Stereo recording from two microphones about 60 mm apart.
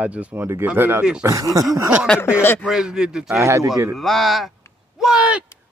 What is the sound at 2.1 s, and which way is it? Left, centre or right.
Speech, left.